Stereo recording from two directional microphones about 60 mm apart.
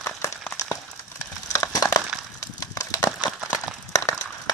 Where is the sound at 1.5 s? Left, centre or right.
Left.